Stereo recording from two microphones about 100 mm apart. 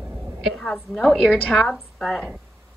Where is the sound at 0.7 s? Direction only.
5° left (ahead or behind).